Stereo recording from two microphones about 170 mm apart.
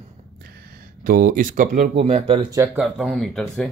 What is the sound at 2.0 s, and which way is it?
Speech, 35° right (ahead or behind).